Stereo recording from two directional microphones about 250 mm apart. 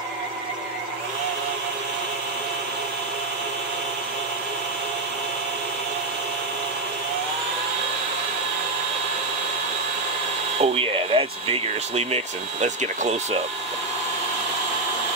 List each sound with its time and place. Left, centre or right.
10.6 s speech: right